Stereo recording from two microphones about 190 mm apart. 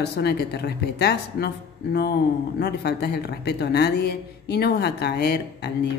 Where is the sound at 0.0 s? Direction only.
60° left (ahead or behind).